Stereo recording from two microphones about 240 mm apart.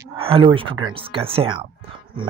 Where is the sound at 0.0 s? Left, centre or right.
Right.